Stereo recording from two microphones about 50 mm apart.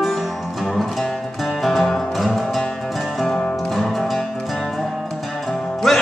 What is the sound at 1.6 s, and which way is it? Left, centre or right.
Music, centre.